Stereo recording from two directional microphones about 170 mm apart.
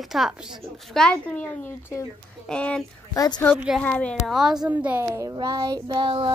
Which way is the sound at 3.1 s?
20° left (ahead or behind).